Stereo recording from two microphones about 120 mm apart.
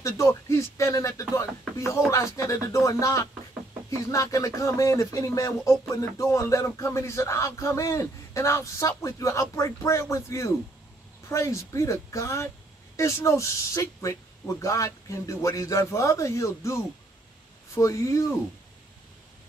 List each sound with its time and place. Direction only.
0.0 s speech: 25° left (ahead or behind)